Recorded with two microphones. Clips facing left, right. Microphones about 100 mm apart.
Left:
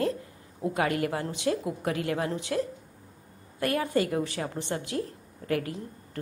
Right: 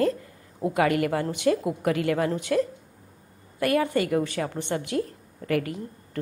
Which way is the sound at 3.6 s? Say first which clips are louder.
Right 3 dB; centre (ahead or behind).